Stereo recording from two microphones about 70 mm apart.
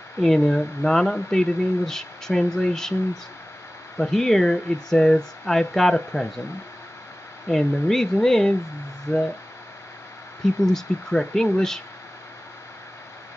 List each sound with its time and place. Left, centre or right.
0.2 s speech: centre
4.0 s speech: centre
7.4 s speech: centre
9.1 s speech: left
10.6 s speech: centre